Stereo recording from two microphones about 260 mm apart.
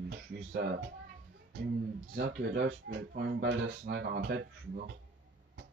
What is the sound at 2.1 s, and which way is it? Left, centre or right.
A woman's voice, right.